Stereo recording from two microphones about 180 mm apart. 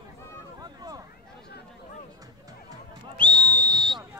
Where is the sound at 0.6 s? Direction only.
20° right (ahead or behind).